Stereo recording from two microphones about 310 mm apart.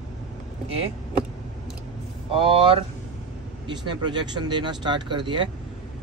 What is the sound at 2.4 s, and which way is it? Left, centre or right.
Speech, centre.